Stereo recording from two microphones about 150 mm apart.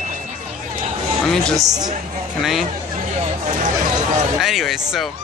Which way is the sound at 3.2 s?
45° right (ahead or behind).